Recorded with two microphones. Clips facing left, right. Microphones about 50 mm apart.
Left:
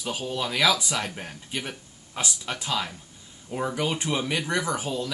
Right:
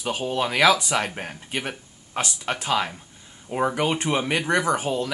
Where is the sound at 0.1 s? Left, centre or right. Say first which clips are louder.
Right 5 dB; right.